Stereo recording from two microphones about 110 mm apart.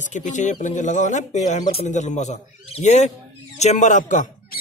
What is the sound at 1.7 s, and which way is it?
Speech, 75° left (ahead or behind).